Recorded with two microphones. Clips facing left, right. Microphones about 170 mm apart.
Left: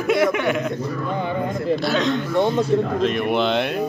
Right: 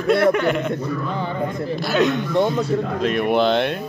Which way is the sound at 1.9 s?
10° right (ahead or behind).